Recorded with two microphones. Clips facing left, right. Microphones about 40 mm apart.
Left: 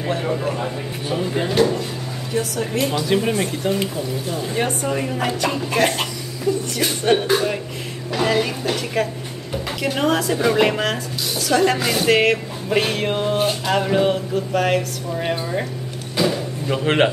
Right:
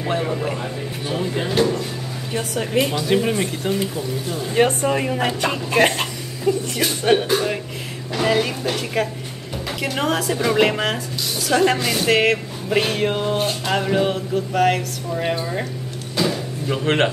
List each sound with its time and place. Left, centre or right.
0.2 s speech: centre
2.6 s speech: centre
2.9 s speech: centre
4.8 s speech: right
6.5 s speech: right
6.8 s speech: centre
16.2 s a sound: centre